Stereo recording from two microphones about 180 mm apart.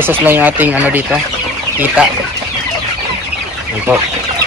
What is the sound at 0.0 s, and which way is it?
Speech, 10° right (ahead or behind).